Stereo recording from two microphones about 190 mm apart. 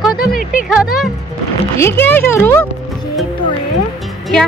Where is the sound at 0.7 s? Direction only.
Centre (ahead or behind).